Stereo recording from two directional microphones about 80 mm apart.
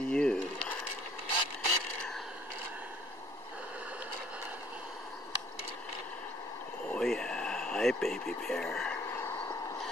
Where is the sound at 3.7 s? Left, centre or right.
Centre.